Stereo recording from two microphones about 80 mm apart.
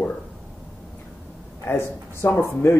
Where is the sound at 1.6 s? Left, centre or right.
Left.